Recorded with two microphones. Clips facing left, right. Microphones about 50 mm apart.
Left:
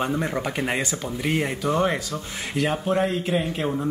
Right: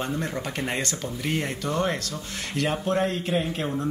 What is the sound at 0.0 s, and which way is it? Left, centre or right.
Speech, centre.